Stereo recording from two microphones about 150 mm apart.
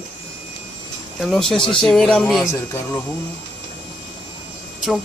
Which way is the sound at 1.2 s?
Centre (ahead or behind).